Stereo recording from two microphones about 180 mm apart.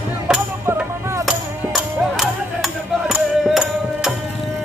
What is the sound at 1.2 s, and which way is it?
Music, centre (ahead or behind).